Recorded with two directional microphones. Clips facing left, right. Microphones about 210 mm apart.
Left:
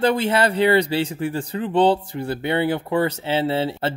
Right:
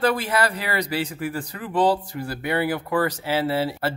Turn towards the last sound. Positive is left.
turn(degrees=25)  # may be behind; listen again after turning